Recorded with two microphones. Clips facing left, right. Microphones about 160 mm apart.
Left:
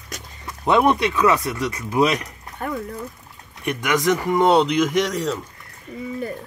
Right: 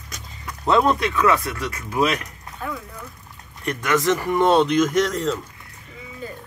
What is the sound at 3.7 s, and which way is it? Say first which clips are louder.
Speech: even; 10° left (ahead or behind).